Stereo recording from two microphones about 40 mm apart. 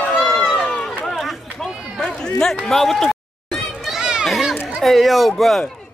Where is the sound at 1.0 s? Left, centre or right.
Centre.